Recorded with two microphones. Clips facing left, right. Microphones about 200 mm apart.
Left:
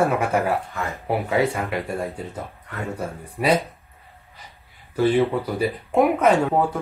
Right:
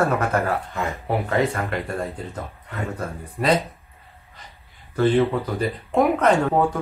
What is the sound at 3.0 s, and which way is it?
Speech, 10° left (ahead or behind).